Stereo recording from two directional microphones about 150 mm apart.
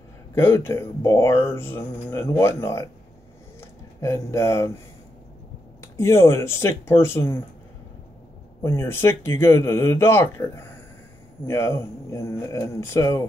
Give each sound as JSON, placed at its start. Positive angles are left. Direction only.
{"t": 0.3, "sound": "speech", "side_deg": 15}
{"t": 4.0, "sound": "speech", "side_deg": 20}
{"t": 5.8, "sound": "speech", "side_deg": 15}
{"t": 8.6, "sound": "speech", "side_deg": 15}